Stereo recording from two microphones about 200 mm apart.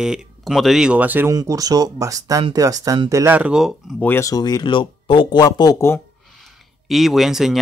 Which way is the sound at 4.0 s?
15° left (ahead or behind).